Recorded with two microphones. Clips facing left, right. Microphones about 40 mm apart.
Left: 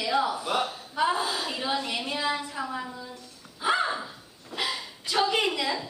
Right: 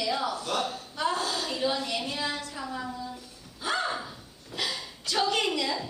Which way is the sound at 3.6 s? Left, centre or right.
Centre.